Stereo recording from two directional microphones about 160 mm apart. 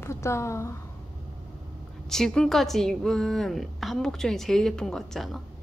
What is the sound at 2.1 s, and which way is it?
A woman's voice, 5° left (ahead or behind).